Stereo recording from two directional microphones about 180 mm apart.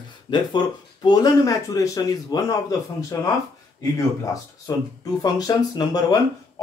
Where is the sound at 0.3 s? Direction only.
25° left (ahead or behind).